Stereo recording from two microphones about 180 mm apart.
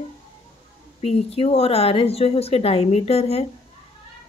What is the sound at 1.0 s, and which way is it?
Speech, 35° left (ahead or behind).